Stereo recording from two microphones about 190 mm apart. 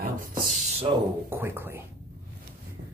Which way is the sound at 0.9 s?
35° right (ahead or behind).